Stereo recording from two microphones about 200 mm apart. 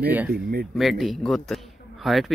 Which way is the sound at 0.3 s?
50° right (ahead or behind).